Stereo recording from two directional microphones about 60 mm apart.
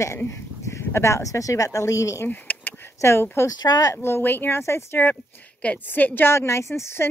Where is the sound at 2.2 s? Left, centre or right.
Left.